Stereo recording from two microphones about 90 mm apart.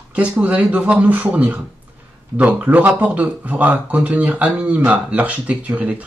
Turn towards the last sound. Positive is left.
turn(degrees=-15)  # may be behind; listen again after turning